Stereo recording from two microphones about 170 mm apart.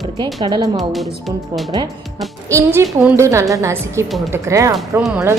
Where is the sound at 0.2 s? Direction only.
25° right (ahead or behind).